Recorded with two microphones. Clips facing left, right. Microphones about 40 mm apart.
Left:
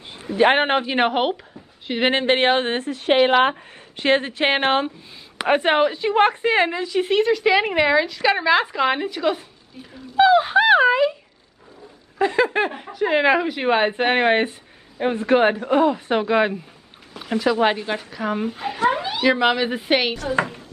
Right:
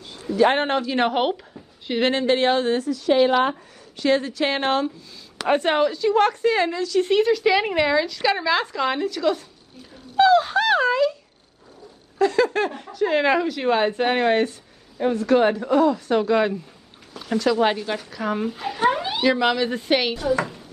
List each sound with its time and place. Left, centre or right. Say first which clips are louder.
0.0 s a man's voice: left 1 dB; left
1.1 s speech: left 1 dB; centre
2.0 s a woman's voice: left 2 dB; left
4.0 s a woman's voice: left 2 dB; left
7.1 s speech: left 1 dB; centre; by 11.1 s left
12.2 s speech: even; left
20.3 s speech: left 3 dB; left